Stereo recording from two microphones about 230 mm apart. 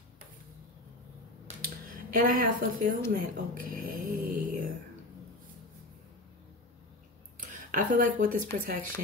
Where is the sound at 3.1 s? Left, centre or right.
Right.